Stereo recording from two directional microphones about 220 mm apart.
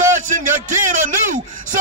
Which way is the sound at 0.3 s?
35° right (ahead or behind).